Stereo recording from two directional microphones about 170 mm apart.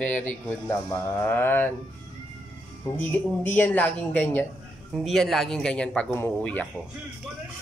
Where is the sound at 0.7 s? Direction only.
15° left (ahead or behind).